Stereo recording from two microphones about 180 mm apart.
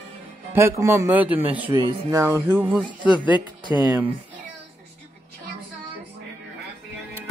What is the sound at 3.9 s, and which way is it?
Speech, 10° right (ahead or behind).